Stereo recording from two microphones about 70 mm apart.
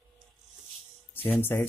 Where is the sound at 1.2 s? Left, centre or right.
Left.